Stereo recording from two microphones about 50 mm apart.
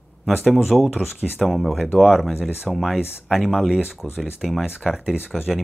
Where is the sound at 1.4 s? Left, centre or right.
Centre.